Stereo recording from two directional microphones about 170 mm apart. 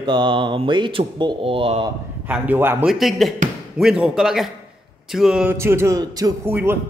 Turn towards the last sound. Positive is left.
turn(degrees=-15)  # may be behind; listen again after turning